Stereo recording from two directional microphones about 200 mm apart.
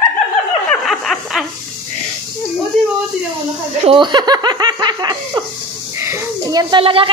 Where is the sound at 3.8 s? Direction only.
25° right (ahead or behind).